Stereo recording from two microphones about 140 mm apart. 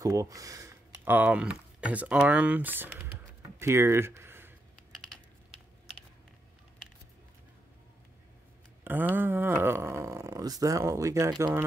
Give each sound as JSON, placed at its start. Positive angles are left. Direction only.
{"t": 0.0, "sound": "speech", "side_deg": -25}
{"t": 3.5, "sound": "a sound", "side_deg": -20}
{"t": 8.8, "sound": "speech", "side_deg": -15}